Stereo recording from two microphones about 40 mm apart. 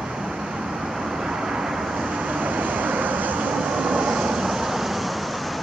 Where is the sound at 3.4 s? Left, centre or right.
Right.